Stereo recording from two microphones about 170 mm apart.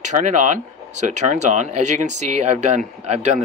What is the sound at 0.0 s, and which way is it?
Speech, 45° right (ahead or behind).